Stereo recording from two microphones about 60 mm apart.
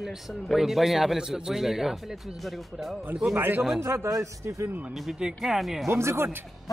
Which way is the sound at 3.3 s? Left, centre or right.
Right.